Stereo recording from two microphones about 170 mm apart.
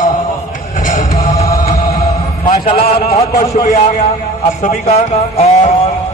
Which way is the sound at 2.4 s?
40° left (ahead or behind).